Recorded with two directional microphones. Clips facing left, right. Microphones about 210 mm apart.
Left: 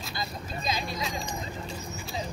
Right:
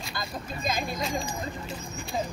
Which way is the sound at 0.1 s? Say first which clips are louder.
Right 1 dB; 50° right (ahead or behind).